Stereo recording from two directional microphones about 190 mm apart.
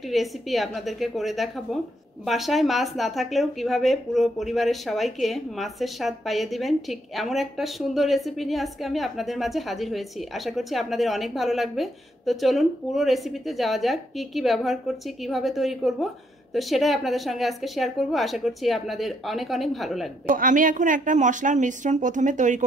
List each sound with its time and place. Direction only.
0.0 s speech: centre (ahead or behind)
20.2 s a woman's voice: 45° right (ahead or behind)